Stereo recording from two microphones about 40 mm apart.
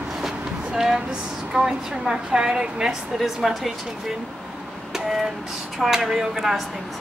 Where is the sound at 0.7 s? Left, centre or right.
Centre.